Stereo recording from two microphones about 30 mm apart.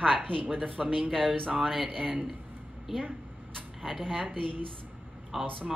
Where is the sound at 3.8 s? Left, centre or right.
Centre.